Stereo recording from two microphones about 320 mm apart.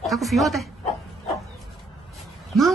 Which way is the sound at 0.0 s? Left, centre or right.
Centre.